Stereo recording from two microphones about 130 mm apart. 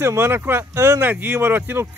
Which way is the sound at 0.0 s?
20° right (ahead or behind).